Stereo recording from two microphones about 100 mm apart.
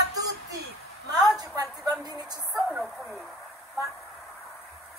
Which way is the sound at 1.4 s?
40° right (ahead or behind).